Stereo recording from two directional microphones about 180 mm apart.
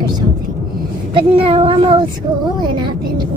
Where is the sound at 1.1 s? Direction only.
30° right (ahead or behind).